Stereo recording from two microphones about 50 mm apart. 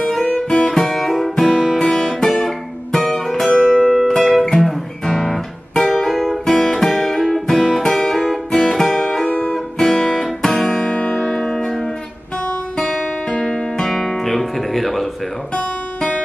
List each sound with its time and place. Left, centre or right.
0.0 s music: centre
0.7 s music: centre
1.3 s guitar: centre
1.8 s guitar: centre
3.5 s music: centre
6.6 s guitar: centre
8.7 s music: centre
10.9 s music: centre
12.8 s guitar: left; by 15.0 s centre